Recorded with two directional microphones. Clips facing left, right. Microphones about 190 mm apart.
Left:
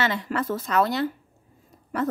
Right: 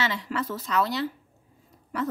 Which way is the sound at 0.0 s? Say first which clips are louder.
Left 3 dB; 50° left (ahead or behind).